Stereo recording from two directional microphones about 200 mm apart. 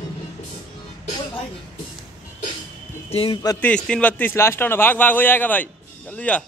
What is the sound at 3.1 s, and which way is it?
Speech, 25° left (ahead or behind).